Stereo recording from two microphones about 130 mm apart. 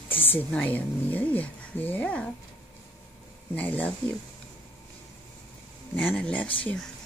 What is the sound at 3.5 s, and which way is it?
Speech, 10° left (ahead or behind).